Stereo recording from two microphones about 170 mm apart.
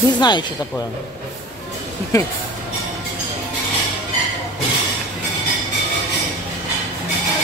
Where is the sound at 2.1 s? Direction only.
20° left (ahead or behind).